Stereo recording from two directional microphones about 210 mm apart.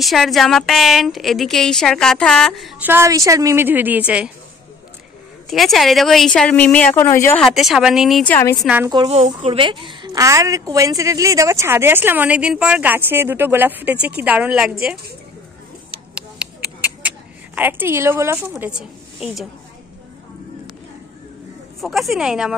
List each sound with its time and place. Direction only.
0.0 s a woman's voice: centre (ahead or behind)
2.9 s a woman's voice: 15° right (ahead or behind)
5.5 s a woman's voice: centre (ahead or behind)
7.4 s a woman's voice: centre (ahead or behind)
8.5 s a woman's voice: 10° right (ahead or behind)
8.9 s a woman's voice: 20° right (ahead or behind); by 14.7 s 5° right (ahead or behind)
15.9 s a sound: 5° right (ahead or behind)
17.6 s a woman's voice: 10° right (ahead or behind)
21.8 s a woman's voice: centre (ahead or behind)